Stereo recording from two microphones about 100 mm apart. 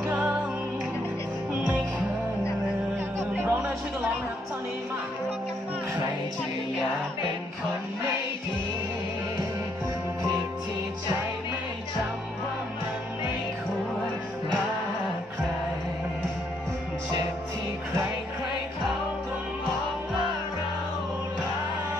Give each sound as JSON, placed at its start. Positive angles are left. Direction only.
{"t": 0.0, "sound": "music", "side_deg": -15}
{"t": 1.5, "sound": "music", "side_deg": -10}
{"t": 3.2, "sound": "music", "side_deg": -25}